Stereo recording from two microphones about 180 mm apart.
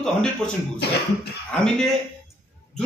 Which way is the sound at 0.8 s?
65° left (ahead or behind).